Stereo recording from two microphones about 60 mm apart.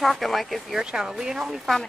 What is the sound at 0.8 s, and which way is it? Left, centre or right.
Speech, centre.